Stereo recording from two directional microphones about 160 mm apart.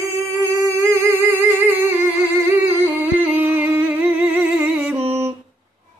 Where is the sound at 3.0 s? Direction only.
10° right (ahead or behind).